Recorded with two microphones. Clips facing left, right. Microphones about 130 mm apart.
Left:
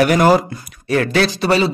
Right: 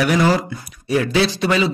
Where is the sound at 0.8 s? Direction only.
65° left (ahead or behind).